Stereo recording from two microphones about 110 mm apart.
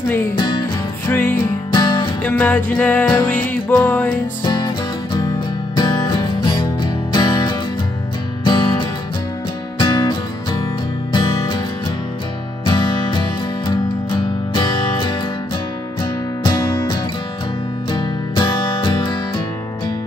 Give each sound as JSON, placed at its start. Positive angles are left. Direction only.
{"t": 0.4, "sound": "music", "side_deg": 45}
{"t": 1.0, "sound": "music", "side_deg": 20}
{"t": 1.7, "sound": "music", "side_deg": 40}
{"t": 2.2, "sound": "music", "side_deg": 15}
{"t": 4.5, "sound": "music", "side_deg": 40}
{"t": 11.1, "sound": "music", "side_deg": 45}
{"t": 12.6, "sound": "music", "side_deg": 45}
{"t": 14.5, "sound": "music", "side_deg": 40}
{"t": 17.9, "sound": "music", "side_deg": 50}